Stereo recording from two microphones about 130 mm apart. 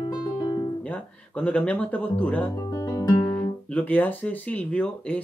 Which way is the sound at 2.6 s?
25° left (ahead or behind).